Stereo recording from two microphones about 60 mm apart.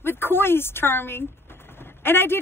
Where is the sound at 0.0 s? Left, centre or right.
Left.